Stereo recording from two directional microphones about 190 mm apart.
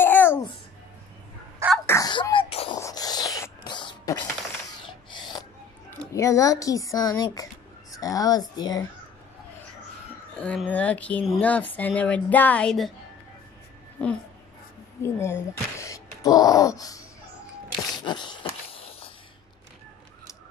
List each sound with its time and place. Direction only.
0.0 s babbling: 10° left (ahead or behind)
1.9 s sneeze: 20° left (ahead or behind)
2.8 s a sound: 20° left (ahead or behind)
5.9 s speech: 15° left (ahead or behind)
10.3 s speech: 5° left (ahead or behind)
15.1 s wail: 15° left (ahead or behind)
17.9 s dog: 25° left (ahead or behind)